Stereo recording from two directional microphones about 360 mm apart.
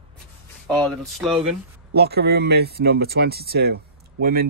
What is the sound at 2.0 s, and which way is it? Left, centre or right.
Speech, right.